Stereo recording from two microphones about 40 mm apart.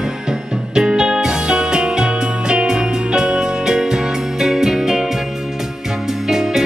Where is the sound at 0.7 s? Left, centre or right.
Centre.